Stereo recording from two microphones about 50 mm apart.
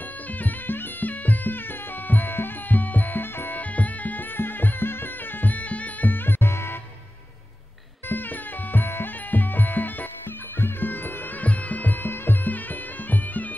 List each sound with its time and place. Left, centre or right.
0.4 s music: left
3.7 s music: left
4.4 s music: left
6.4 s music: left
8.7 s music: left